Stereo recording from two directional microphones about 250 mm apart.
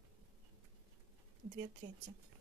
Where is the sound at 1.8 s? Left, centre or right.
Right.